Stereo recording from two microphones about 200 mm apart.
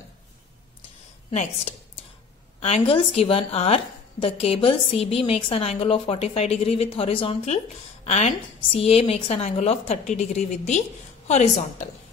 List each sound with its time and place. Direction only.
1.3 s a woman's voice: 35° left (ahead or behind)